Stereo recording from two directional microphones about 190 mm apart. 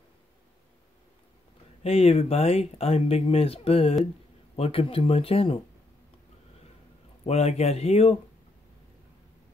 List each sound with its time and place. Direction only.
1.8 s speech: 35° left (ahead or behind)
7.2 s speech: 35° left (ahead or behind)